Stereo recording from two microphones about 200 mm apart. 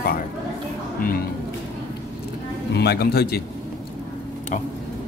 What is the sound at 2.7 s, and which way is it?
Speech, 55° left (ahead or behind).